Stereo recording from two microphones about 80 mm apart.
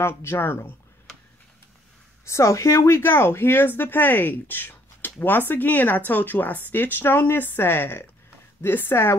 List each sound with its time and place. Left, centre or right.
0.0 s speech: left
2.2 s speech: left